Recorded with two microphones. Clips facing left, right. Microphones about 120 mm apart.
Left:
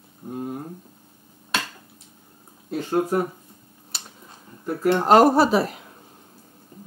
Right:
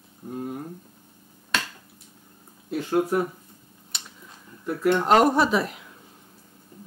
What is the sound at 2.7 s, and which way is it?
Speech, 30° left (ahead or behind).